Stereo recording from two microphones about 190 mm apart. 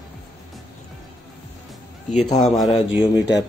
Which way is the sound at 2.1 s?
35° left (ahead or behind).